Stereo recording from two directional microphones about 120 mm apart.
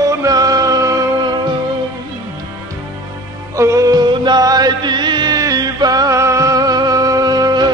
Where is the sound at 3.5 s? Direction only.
25° right (ahead or behind).